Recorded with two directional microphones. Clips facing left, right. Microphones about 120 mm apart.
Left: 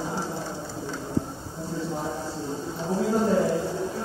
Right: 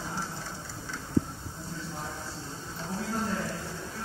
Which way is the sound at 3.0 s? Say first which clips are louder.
Left 11 dB; 20° left (ahead or behind).